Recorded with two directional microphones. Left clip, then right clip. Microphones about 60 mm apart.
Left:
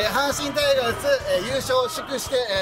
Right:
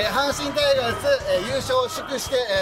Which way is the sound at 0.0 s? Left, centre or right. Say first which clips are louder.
Even; left.